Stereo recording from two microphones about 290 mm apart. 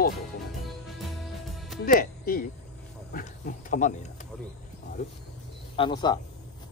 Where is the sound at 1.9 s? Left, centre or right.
Left.